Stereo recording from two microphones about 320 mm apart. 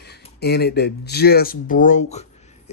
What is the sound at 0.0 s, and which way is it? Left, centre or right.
Speech, left.